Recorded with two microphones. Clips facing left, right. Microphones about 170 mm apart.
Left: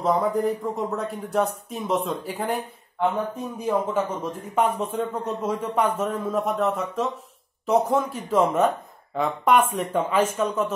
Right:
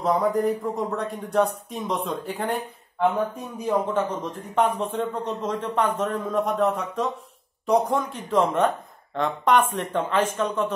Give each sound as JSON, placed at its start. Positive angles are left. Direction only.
{"t": 0.0, "sound": "speech", "side_deg": 0}